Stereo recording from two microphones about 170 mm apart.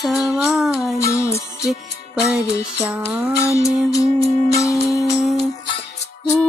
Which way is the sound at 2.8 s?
10° right (ahead or behind).